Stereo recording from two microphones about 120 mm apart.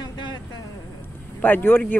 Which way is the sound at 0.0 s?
35° left (ahead or behind).